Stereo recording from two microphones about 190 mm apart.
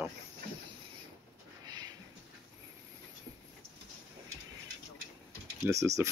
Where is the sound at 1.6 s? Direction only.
20° right (ahead or behind).